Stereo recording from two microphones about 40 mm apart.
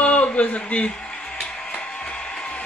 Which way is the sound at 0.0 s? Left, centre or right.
Left.